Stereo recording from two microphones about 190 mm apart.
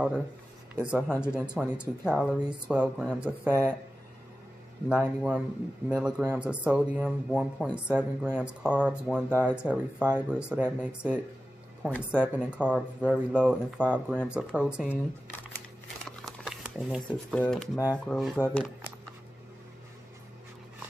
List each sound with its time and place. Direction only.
0.7 s speech: 5° right (ahead or behind)
3.4 s speech: 15° right (ahead or behind)
4.8 s speech: 5° right (ahead or behind)
16.3 s a sound: centre (ahead or behind)
17.4 s speech: 5° left (ahead or behind)